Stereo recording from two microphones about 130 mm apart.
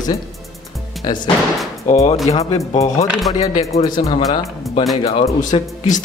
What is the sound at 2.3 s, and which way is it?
Speech, 55° left (ahead or behind).